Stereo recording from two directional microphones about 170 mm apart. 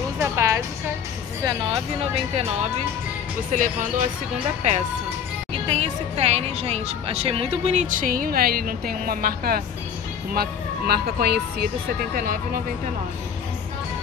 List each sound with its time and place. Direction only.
0.2 s music: 15° right (ahead or behind)
2.3 s speech: 35° right (ahead or behind)
3.5 s speech: 50° right (ahead or behind); by 11.7 s 70° right (ahead or behind)